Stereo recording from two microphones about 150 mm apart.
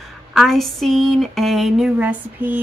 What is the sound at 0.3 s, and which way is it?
A woman's voice, centre (ahead or behind).